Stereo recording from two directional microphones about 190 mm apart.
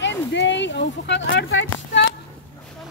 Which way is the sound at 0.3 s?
70° left (ahead or behind).